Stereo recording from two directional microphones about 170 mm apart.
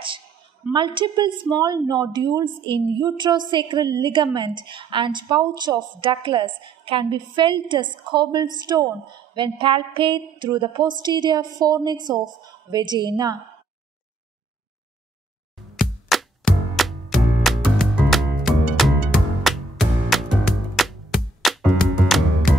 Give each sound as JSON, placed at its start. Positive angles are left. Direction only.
{"t": 0.7, "sound": "a woman's voice", "side_deg": -25}
{"t": 15.7, "sound": "music", "side_deg": 0}